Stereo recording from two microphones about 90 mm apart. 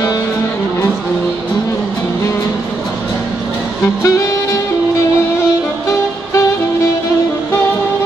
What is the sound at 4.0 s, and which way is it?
Music, 35° left (ahead or behind).